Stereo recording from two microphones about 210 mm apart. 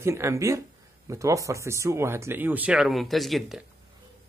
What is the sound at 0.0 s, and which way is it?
A man's voice, 15° right (ahead or behind).